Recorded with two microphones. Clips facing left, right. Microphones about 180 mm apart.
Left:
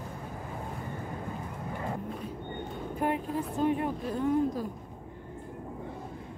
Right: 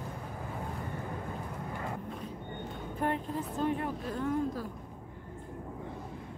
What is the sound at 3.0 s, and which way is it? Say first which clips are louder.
Speech: left 2 dB; 10° left (ahead or behind).